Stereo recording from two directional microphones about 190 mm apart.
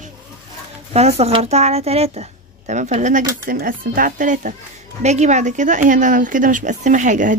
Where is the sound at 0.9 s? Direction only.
35° right (ahead or behind).